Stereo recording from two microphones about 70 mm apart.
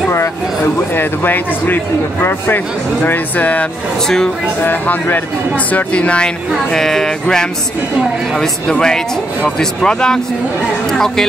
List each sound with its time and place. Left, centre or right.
0.9 s speech: left
4.6 s speech: left; by 11.2 s centre